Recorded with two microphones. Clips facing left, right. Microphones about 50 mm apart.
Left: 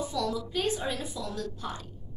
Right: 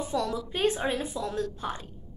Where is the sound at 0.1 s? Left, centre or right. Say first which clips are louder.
Right 1 dB; right.